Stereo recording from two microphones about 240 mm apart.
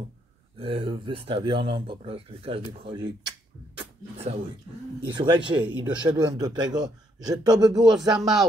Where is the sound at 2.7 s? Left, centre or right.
Centre.